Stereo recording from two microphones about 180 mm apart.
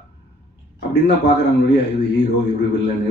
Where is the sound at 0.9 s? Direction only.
65° left (ahead or behind).